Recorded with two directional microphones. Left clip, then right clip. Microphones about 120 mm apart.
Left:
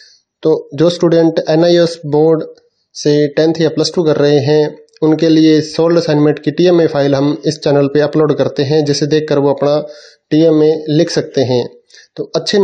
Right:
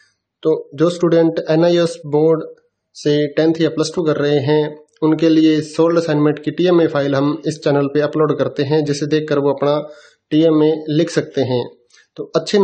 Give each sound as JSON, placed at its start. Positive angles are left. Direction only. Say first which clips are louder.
{"t": 0.4, "sound": "speech", "louder": "left 4 dB", "side_deg": 35}
{"t": 10.6, "sound": "speech", "louder": "left 4 dB", "side_deg": 30}